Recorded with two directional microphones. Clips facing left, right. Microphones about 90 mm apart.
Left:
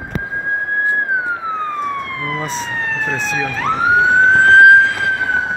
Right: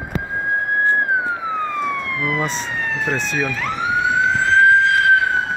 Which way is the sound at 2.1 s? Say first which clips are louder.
Even; 35° left (ahead or behind).